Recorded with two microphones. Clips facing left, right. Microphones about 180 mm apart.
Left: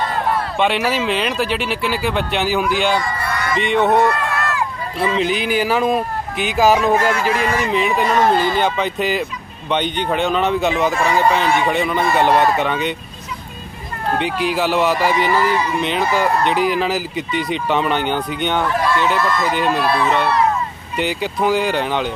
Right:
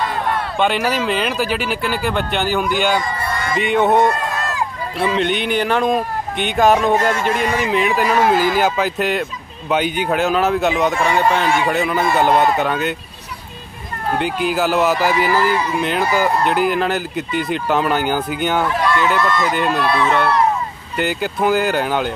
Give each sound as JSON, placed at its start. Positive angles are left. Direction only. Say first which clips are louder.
{"t": 0.3, "sound": "speech", "louder": "even", "side_deg": 0}
{"t": 4.1, "sound": "a sound", "louder": "left 1 dB", "side_deg": -20}
{"t": 4.9, "sound": "speech", "louder": "even", "side_deg": 0}
{"t": 14.1, "sound": "speech", "louder": "right 1 dB", "side_deg": 0}